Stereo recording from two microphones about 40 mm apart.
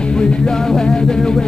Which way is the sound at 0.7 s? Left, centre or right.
Centre.